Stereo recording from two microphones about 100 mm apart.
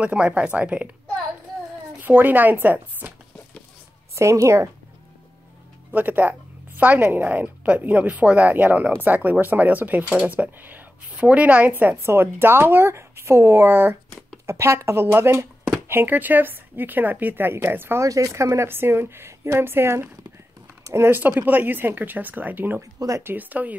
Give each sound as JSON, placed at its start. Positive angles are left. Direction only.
{"t": 0.0, "sound": "a woman's voice", "side_deg": -10}
{"t": 2.0, "sound": "speech", "side_deg": -20}
{"t": 4.1, "sound": "a woman's voice", "side_deg": -30}
{"t": 5.9, "sound": "a woman's voice", "side_deg": -15}
{"t": 18.0, "sound": "a woman's voice", "side_deg": -35}
{"t": 22.8, "sound": "speech", "side_deg": -35}
{"t": 23.2, "sound": "a woman's voice", "side_deg": -15}